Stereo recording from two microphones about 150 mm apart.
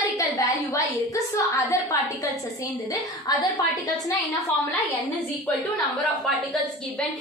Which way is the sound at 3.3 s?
25° left (ahead or behind).